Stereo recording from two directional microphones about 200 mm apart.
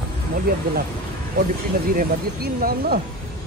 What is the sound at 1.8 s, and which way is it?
Speech, 45° right (ahead or behind).